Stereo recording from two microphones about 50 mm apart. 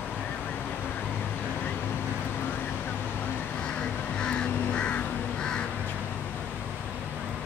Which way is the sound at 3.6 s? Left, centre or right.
Left.